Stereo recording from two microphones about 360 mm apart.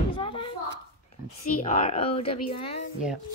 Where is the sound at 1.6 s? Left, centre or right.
Centre.